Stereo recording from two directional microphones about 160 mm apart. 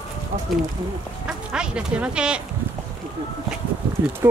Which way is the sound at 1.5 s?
5° right (ahead or behind).